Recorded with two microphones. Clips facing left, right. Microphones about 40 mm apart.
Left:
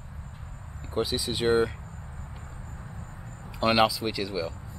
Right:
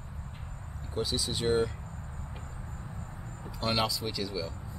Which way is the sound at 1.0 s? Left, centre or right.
Centre.